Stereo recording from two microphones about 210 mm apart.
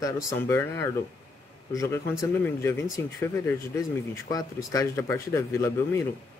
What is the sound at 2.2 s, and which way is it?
A man's voice, 10° left (ahead or behind).